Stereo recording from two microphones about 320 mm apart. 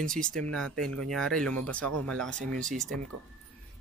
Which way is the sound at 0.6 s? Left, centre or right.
Centre.